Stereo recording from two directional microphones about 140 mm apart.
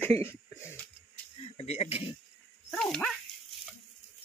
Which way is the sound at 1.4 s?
45° left (ahead or behind).